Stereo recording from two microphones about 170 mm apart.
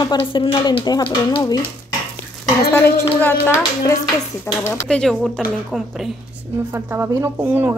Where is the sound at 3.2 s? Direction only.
15° left (ahead or behind).